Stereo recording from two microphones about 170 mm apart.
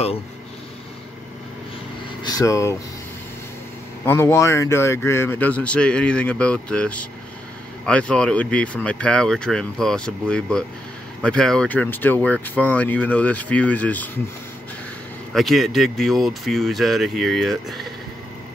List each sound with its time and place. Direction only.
2.2 s speech: 20° left (ahead or behind)
4.0 s speech: 15° left (ahead or behind)
15.3 s speech: centre (ahead or behind)